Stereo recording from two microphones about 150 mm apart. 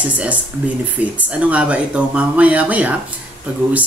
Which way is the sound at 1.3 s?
10° right (ahead or behind).